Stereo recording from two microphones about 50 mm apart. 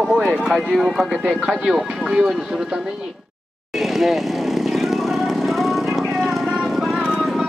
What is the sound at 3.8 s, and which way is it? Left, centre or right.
Vehicle, centre.